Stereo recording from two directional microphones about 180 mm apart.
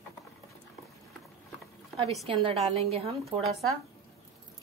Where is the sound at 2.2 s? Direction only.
30° right (ahead or behind).